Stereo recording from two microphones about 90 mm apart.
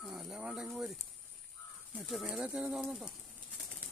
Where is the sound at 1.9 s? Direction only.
5° right (ahead or behind).